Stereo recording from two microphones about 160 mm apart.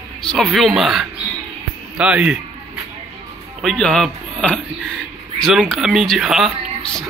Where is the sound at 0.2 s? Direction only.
5° left (ahead or behind).